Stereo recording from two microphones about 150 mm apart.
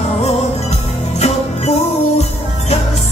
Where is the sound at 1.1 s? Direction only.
45° left (ahead or behind).